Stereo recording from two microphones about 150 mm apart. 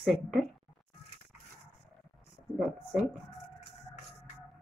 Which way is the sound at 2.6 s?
5° right (ahead or behind).